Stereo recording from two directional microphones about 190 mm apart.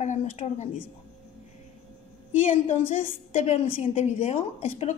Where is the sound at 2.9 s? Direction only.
40° left (ahead or behind).